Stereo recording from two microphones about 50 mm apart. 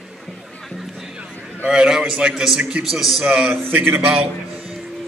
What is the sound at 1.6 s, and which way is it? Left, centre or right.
A man's voice, centre.